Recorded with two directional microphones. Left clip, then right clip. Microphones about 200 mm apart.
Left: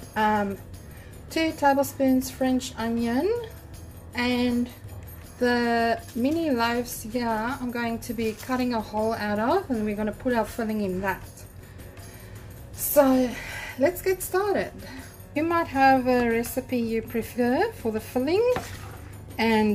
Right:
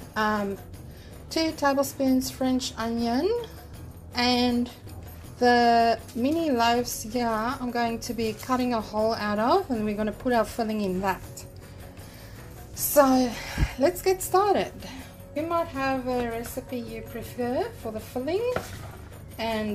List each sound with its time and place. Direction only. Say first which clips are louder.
0.1 s a woman's voice: left 3 dB; 5° left (ahead or behind)
12.9 s a woman's voice: even; 5° right (ahead or behind)
15.4 s a woman's voice: left 7 dB; 35° left (ahead or behind)